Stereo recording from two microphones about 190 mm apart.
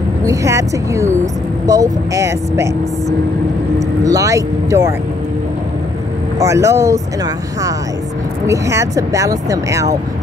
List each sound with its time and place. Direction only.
0.2 s speech: 15° right (ahead or behind)
4.0 s speech: 15° right (ahead or behind)
6.3 s speech: 15° right (ahead or behind)
8.5 s speech: 15° right (ahead or behind)